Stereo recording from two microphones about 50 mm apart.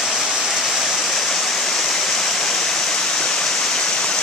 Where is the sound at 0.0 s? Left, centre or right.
Centre.